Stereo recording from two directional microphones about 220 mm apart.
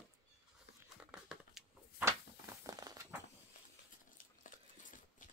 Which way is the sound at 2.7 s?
15° right (ahead or behind).